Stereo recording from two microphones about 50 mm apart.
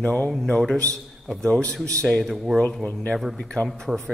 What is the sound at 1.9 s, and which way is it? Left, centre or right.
Speech, left.